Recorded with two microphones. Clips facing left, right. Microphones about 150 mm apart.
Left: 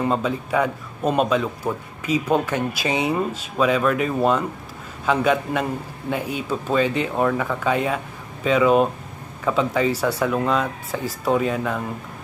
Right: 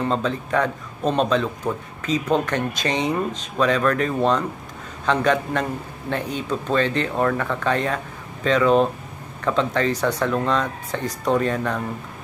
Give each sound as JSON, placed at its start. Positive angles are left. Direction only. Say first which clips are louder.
{"t": 0.0, "sound": "speech", "louder": "left 1 dB", "side_deg": 10}